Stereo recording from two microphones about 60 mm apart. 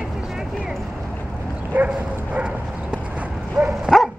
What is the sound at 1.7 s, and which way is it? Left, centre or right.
Bow-wow, right.